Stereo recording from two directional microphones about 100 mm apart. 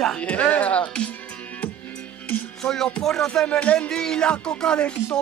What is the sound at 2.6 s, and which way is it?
Music, 5° left (ahead or behind).